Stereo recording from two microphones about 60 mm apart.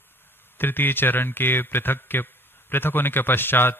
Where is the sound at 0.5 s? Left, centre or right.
Left.